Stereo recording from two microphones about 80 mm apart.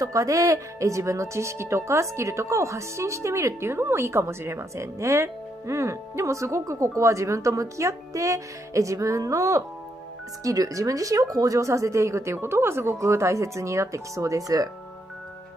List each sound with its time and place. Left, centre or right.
0.0 s speech: right